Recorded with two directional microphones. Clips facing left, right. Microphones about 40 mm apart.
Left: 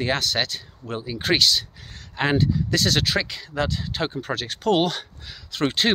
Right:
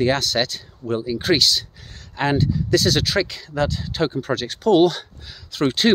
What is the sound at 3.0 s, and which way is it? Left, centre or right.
Speech, left.